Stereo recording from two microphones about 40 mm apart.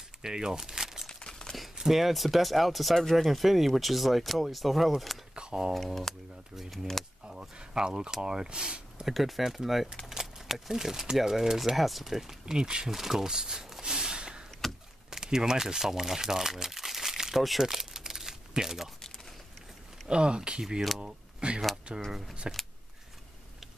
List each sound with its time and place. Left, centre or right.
0.2 s speech: centre
1.0 s a sound: centre
1.8 s speech: centre
5.3 s a sound: right
6.1 s speech: centre
7.2 s speech: right
9.0 s speech: centre
12.5 s speech: right
12.9 s a sound: centre; by 14.4 s right
14.6 s a sound: centre
15.0 s crumpling: centre
20.1 s speech: right